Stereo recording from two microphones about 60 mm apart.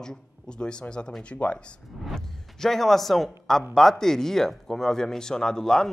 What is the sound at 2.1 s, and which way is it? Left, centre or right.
Speech, centre.